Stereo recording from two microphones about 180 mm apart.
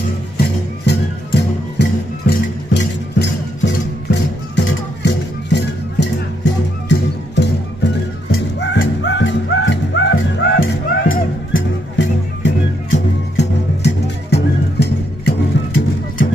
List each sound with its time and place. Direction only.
0.8 s music: 70° left (ahead or behind)